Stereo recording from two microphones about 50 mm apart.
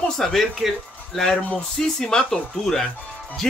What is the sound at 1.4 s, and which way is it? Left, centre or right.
Speech, left.